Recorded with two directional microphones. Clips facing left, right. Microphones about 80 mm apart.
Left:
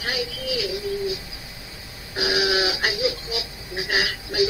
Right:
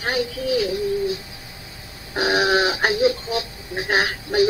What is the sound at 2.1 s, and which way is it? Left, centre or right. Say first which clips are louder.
Speech: right 4 dB; right.